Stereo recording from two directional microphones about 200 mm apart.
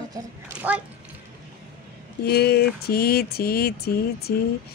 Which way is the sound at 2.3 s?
50° left (ahead or behind).